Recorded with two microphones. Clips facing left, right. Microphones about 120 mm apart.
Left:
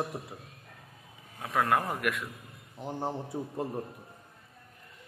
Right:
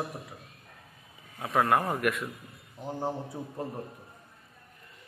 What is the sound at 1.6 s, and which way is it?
Speech, 15° right (ahead or behind).